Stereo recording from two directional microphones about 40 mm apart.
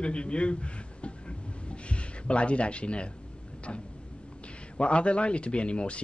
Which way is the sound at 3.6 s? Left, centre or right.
Left.